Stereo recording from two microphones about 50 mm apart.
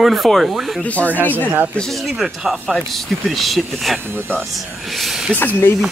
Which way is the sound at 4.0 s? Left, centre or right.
Right.